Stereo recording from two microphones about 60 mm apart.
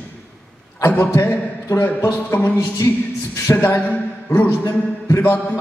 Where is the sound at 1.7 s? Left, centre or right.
Left.